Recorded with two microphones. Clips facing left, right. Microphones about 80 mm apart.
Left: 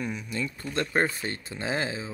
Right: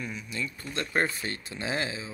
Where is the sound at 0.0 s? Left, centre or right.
Left.